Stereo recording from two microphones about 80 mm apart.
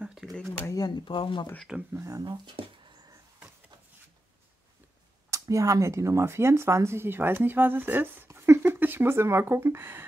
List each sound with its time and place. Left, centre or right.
0.0 s a sound: centre
0.7 s speech: left
2.0 s speech: right
2.2 s speech: right
5.3 s speech: right